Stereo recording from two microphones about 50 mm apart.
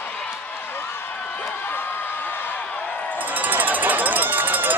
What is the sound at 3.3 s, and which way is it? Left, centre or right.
Run, right.